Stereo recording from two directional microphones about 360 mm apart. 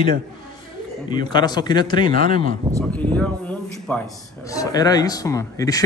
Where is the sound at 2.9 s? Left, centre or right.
Centre.